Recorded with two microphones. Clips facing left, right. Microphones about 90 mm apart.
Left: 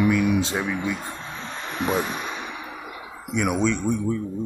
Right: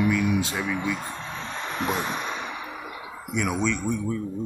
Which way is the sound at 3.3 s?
15° left (ahead or behind).